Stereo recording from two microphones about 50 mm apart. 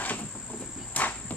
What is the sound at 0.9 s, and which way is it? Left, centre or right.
Cricket, left.